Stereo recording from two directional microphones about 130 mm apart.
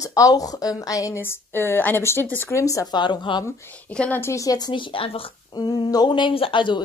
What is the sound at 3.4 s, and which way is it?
A woman's voice, 20° left (ahead or behind).